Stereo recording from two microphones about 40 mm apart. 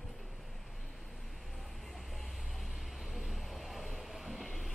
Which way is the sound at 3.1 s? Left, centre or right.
Centre.